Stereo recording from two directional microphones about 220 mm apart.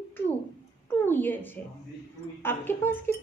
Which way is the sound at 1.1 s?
10° left (ahead or behind).